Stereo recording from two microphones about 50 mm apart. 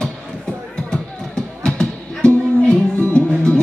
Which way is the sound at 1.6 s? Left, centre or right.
Centre.